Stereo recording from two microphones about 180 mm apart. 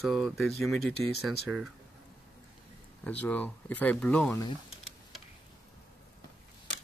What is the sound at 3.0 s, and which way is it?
Speech, 10° left (ahead or behind).